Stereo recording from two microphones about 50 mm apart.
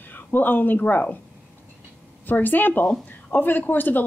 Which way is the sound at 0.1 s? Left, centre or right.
Left.